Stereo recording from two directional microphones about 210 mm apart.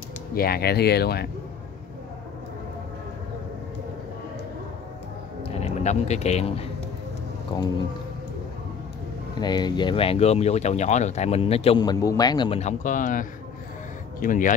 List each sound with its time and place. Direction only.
0.3 s speech: 45° left (ahead or behind)
5.4 s speech: 30° left (ahead or behind)
9.4 s speech: 20° left (ahead or behind); by 14.5 s 40° left (ahead or behind)